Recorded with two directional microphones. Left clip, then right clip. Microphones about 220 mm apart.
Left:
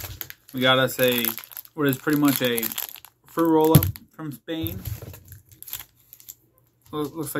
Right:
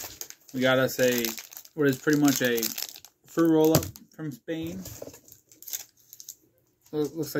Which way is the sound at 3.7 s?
50° left (ahead or behind).